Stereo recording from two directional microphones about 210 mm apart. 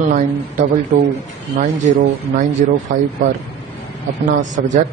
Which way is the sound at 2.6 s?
35° right (ahead or behind).